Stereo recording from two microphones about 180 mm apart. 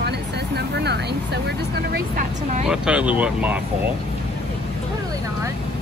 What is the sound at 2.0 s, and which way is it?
Speech, 50° right (ahead or behind).